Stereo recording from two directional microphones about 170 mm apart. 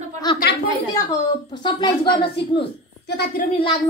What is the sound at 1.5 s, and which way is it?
Speech, 25° left (ahead or behind).